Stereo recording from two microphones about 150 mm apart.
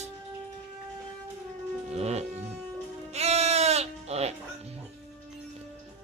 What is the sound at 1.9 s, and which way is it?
Speech, 45° right (ahead or behind).